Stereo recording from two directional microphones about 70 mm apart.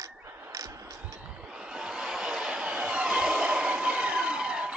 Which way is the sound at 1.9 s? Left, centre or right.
Centre.